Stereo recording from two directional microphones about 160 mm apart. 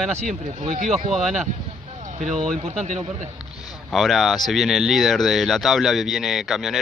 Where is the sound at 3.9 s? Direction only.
Centre (ahead or behind).